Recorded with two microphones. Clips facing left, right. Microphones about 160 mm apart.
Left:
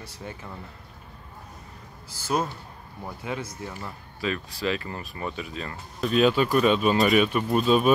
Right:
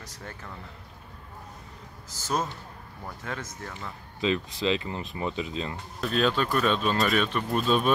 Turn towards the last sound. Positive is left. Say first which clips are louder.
# left 4 dB
turn(degrees=5)  # may be behind; listen again after turning